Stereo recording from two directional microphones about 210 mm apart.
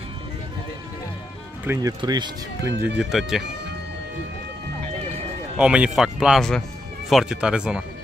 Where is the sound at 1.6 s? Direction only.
15° right (ahead or behind).